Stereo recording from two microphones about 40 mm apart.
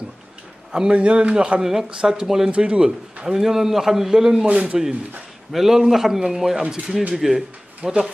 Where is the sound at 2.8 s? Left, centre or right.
Centre.